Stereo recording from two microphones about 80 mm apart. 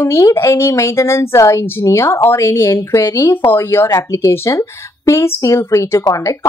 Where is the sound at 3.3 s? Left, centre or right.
Left.